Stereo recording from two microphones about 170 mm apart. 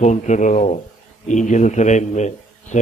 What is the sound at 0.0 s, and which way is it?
Speech, 45° left (ahead or behind).